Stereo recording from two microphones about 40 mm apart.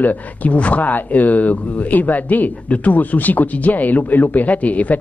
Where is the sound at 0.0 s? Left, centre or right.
Left.